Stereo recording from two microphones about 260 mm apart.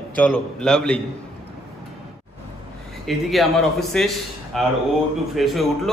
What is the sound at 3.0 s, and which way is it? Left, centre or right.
A man's voice, centre.